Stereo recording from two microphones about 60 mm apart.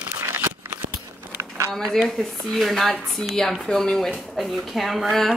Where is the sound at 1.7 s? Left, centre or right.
Centre.